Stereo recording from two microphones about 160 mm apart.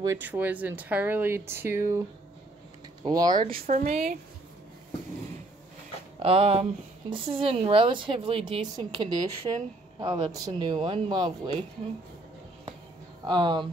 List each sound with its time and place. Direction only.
0.0 s speech: 20° right (ahead or behind)
0.3 s speech: 10° right (ahead or behind)
3.0 s speech: 25° right (ahead or behind)
3.6 s speech: 50° right (ahead or behind)
6.1 s speech: 40° right (ahead or behind)
13.2 s speech: 25° right (ahead or behind)